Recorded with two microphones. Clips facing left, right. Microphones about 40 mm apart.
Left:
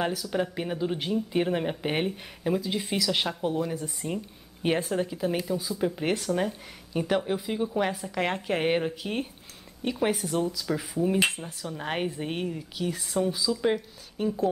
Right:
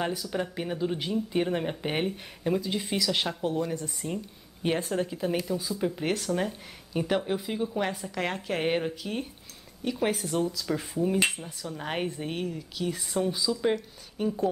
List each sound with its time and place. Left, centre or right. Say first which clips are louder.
0.3 s speech: left 2 dB; centre
9.0 s speech: left 2 dB; left
9.9 s speech: left 1 dB; centre
12.8 s speech: left 1 dB; centre